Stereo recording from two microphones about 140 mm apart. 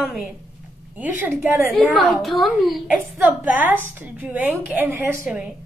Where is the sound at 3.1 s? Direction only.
10° right (ahead or behind).